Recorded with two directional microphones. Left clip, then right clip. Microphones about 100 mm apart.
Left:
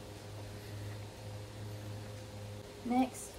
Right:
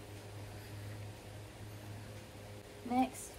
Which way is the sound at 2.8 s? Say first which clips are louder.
Left 2 dB; 25° left (ahead or behind).